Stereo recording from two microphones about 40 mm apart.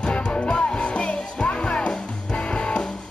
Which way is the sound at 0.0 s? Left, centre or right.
Left.